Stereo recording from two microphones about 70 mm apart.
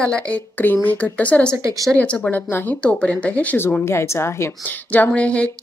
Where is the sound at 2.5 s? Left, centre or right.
Left.